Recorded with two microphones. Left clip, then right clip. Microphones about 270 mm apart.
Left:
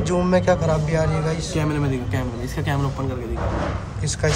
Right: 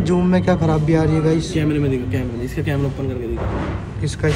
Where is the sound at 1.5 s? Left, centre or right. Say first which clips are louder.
Right 4 dB; left.